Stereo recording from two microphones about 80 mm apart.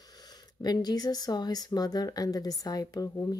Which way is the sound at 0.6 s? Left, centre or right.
Left.